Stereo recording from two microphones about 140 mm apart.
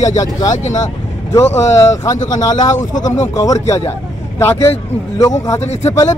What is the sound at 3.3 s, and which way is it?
A man's voice, 25° left (ahead or behind).